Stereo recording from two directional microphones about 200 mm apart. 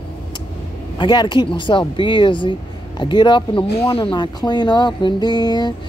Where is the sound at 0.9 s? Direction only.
20° left (ahead or behind).